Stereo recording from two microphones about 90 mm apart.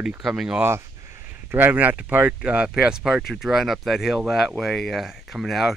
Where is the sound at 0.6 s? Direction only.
30° right (ahead or behind); by 5.8 s centre (ahead or behind).